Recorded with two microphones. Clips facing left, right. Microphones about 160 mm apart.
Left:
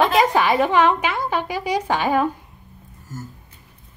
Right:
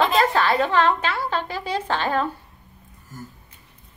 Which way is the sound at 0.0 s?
15° left (ahead or behind).